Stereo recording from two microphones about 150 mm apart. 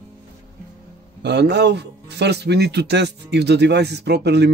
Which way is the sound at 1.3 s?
90° right.